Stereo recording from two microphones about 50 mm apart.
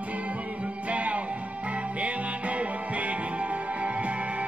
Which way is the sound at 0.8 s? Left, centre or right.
Right.